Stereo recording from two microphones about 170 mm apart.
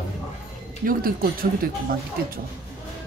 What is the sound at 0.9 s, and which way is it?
Speech, 55° right (ahead or behind).